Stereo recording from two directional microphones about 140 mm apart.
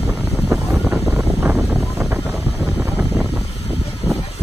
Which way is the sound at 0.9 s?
15° right (ahead or behind).